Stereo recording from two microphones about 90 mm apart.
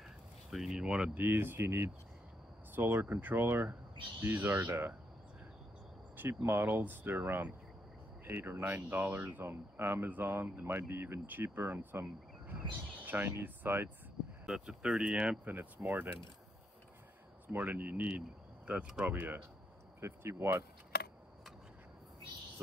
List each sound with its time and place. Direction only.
0.5 s speech: 5° right (ahead or behind); by 4.9 s 25° right (ahead or behind)
6.1 s speech: 25° right (ahead or behind)
14.4 s speech: 10° right (ahead or behind)
17.5 s speech: 20° right (ahead or behind)